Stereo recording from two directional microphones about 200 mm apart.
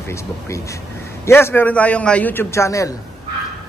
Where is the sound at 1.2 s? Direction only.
10° left (ahead or behind).